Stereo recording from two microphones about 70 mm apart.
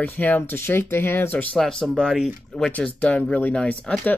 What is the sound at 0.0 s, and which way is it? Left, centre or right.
Speech, left.